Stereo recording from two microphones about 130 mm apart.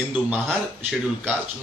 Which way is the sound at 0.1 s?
10° right (ahead or behind).